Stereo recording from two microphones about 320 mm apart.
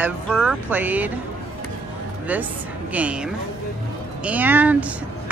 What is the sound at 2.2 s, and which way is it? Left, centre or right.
Speech, centre.